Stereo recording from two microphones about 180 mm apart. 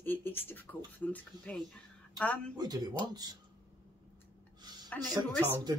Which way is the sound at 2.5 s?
20° right (ahead or behind).